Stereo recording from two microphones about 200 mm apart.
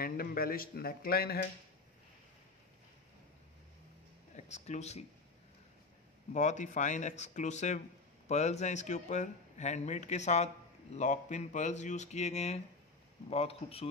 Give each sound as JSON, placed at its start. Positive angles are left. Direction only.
{"t": 0.0, "sound": "speech", "side_deg": 45}
{"t": 4.4, "sound": "speech", "side_deg": 35}
{"t": 6.3, "sound": "a man's voice", "side_deg": 35}